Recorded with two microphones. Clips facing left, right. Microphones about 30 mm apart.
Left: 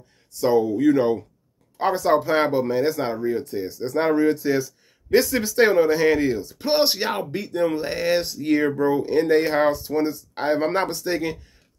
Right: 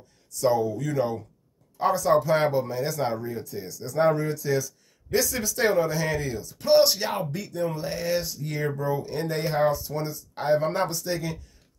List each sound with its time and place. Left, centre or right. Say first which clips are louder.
0.4 s speech: left 5 dB; left
2.2 s speech: left 2 dB; left
2.5 s speech: left 6 dB; left
3.0 s speech: left 2 dB; centre
3.3 s speech: left 9 dB; left
3.5 s speech: left 8 dB; left
3.8 s speech: even; left
4.2 s speech: left 6 dB; left
10.3 s speech: left 1 dB; left